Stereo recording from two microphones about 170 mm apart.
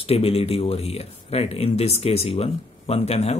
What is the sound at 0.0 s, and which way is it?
A man's voice, 35° left (ahead or behind).